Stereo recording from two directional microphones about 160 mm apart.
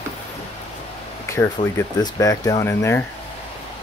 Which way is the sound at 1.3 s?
15° left (ahead or behind).